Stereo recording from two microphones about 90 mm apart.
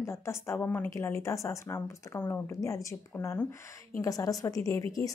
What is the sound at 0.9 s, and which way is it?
Speech, 30° left (ahead or behind).